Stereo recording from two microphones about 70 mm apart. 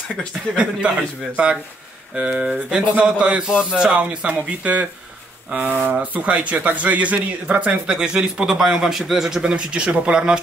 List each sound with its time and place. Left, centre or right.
0.6 s speech: centre